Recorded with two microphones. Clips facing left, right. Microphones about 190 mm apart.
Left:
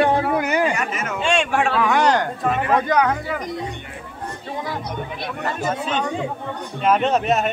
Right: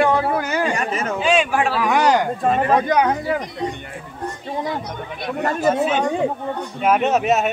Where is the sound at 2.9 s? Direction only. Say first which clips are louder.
Right 1 dB; 20° right (ahead or behind).